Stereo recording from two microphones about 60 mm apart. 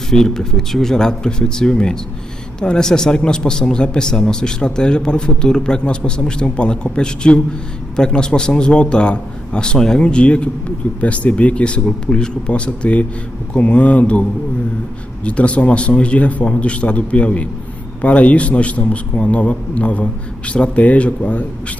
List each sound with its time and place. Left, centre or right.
0.1 s a man's voice: centre
15.2 s a man's voice: left